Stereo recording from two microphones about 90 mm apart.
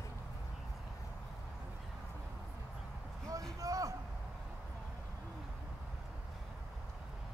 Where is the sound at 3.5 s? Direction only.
40° right (ahead or behind).